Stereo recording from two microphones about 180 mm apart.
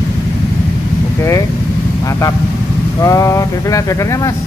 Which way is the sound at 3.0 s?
20° left (ahead or behind).